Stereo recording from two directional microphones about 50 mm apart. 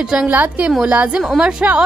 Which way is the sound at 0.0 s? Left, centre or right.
Centre.